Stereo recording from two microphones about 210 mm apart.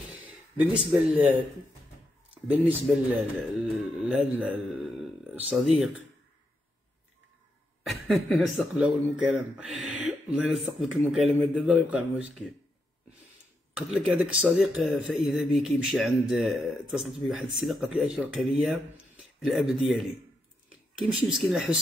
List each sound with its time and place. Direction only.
0.2 s speech: 5° right (ahead or behind)
3.2 s a man's voice: centre (ahead or behind)
7.8 s speech: centre (ahead or behind)
13.9 s speech: 5° right (ahead or behind)